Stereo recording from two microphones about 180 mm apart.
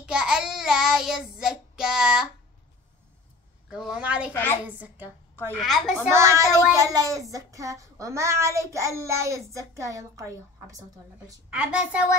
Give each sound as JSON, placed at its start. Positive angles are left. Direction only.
{"t": 0.0, "sound": "child singing", "side_deg": -5}
{"t": 3.7, "sound": "a woman's voice", "side_deg": -5}
{"t": 4.3, "sound": "a woman's voice", "side_deg": 10}
{"t": 4.6, "sound": "a woman's voice", "side_deg": -10}
{"t": 5.6, "sound": "a woman's voice", "side_deg": 0}
{"t": 6.1, "sound": "a child's voice", "side_deg": -15}
{"t": 11.5, "sound": "a woman's voice", "side_deg": -5}